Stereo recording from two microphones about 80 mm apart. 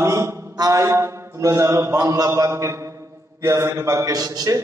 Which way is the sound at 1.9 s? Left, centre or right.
Right.